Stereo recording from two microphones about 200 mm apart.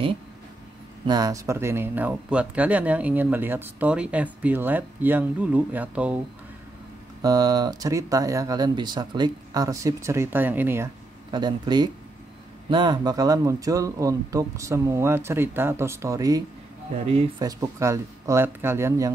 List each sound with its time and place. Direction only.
1.0 s speech: 20° right (ahead or behind)
7.2 s speech: 20° right (ahead or behind)
11.3 s speech: 20° right (ahead or behind)
17.0 s speech: 30° right (ahead or behind)
17.4 s speech: 20° right (ahead or behind)